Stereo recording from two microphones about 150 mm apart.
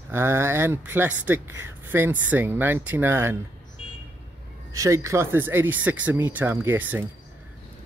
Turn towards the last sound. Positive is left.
turn(degrees=-15)  # may be behind; listen again after turning